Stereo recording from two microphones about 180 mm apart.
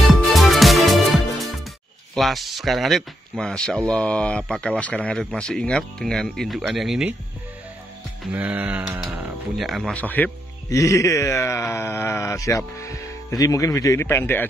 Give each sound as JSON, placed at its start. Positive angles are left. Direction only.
{"t": 0.1, "sound": "music", "side_deg": 0}
{"t": 2.1, "sound": "speech", "side_deg": 0}
{"t": 8.2, "sound": "speech", "side_deg": -10}